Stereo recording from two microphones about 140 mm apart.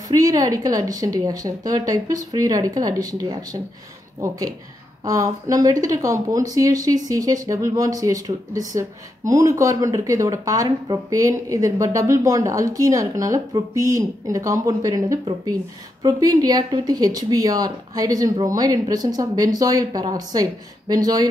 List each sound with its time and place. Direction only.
0.1 s speech: 25° right (ahead or behind)